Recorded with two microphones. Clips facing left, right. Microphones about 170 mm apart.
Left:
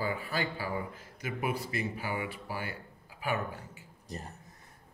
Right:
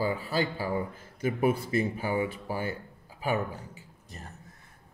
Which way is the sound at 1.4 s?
50° right (ahead or behind).